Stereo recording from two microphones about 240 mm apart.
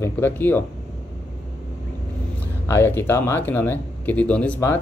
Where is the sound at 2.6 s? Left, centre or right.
Centre.